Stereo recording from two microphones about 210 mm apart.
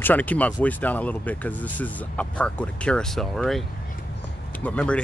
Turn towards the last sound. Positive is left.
turn(degrees=5)  # may be behind; listen again after turning